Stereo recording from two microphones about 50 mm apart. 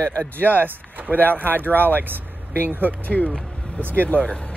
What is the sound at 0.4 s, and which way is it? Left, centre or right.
Speech, right.